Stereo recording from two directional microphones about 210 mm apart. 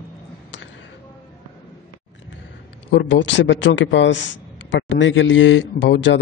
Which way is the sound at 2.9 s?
60° left (ahead or behind).